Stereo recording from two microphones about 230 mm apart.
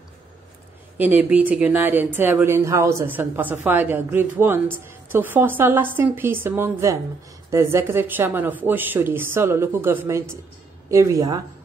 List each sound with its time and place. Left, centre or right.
0.9 s speech: centre